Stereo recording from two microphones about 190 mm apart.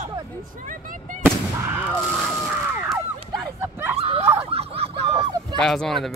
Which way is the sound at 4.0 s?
30° right (ahead or behind).